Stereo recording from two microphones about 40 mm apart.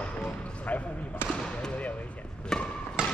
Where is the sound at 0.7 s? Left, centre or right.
Left.